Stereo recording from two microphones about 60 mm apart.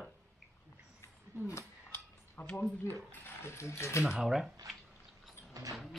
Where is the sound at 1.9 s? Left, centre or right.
Left.